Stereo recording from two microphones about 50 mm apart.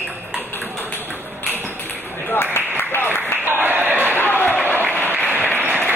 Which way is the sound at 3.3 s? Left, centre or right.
Right.